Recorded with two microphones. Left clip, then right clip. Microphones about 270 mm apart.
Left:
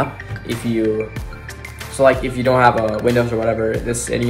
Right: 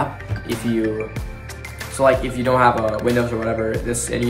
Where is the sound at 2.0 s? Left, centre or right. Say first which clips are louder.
Left 2 dB; centre.